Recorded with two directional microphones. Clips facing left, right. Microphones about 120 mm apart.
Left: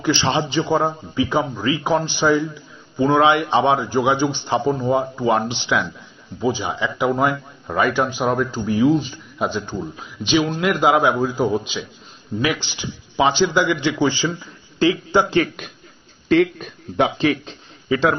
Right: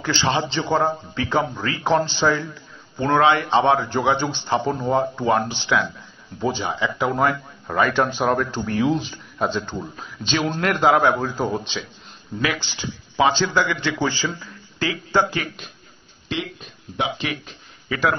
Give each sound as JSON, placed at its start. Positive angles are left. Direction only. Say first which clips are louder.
{"t": 0.0, "sound": "a man's voice", "louder": "left 2 dB", "side_deg": 15}
{"t": 5.3, "sound": "a man's voice", "louder": "left 1 dB", "side_deg": 20}
{"t": 7.9, "sound": "speech", "louder": "even", "side_deg": 5}
{"t": 9.4, "sound": "a man's voice", "louder": "left 1 dB", "side_deg": 10}
{"t": 12.3, "sound": "a man's voice", "louder": "left 3 dB", "side_deg": 25}
{"t": 16.3, "sound": "speech", "louder": "left 13 dB", "side_deg": 50}
{"t": 17.2, "sound": "speech", "louder": "left 9 dB", "side_deg": 35}